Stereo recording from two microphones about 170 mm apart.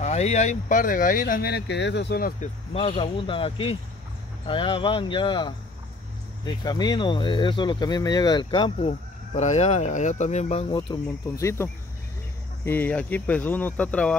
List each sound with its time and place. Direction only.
0.0 s speech: 40° left (ahead or behind); by 2.3 s 70° left (ahead or behind)
2.4 s speech: 35° left (ahead or behind); by 14.1 s 10° left (ahead or behind)